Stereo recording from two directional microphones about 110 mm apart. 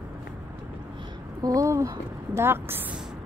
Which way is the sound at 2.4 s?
20° right (ahead or behind).